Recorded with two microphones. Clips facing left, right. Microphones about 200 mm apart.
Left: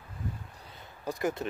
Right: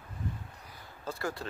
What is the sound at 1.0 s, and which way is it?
Speech, 20° left (ahead or behind).